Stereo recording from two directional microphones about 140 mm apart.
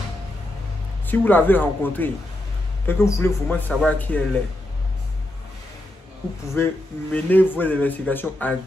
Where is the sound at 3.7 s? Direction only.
5° left (ahead or behind).